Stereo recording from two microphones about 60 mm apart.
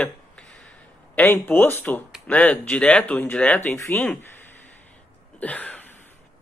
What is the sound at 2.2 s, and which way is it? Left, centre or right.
Speech, left.